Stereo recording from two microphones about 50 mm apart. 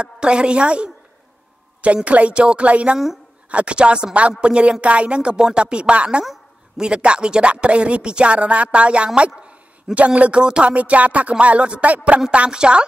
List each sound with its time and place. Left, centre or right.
0.0 s speech: right
2.0 s speech: right
12.3 s speech: centre